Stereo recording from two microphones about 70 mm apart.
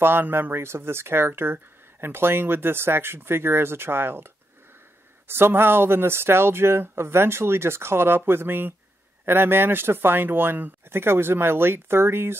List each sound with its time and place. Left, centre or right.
0.0 s speech: right
5.3 s speech: right